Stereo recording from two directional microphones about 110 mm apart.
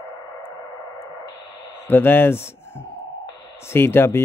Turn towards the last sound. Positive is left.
turn(degrees=20)  # may be behind; listen again after turning